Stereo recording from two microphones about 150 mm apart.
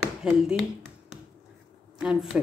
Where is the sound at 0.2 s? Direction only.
5° right (ahead or behind).